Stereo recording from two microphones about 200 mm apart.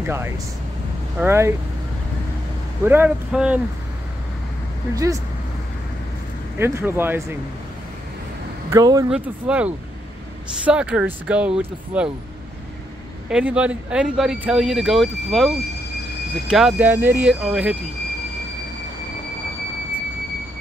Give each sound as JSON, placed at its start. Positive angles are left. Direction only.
{"t": 0.0, "sound": "speech", "side_deg": -10}
{"t": 2.8, "sound": "speech", "side_deg": -10}
{"t": 4.9, "sound": "speech", "side_deg": -15}
{"t": 6.6, "sound": "speech", "side_deg": -10}
{"t": 8.6, "sound": "speech", "side_deg": -15}
{"t": 9.1, "sound": "speech", "side_deg": -5}
{"t": 13.3, "sound": "speech", "side_deg": -5}